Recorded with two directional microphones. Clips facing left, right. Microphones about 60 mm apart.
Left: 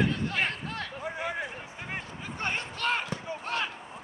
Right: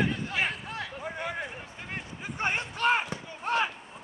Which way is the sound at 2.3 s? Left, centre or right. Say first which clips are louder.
Right 3 dB; centre.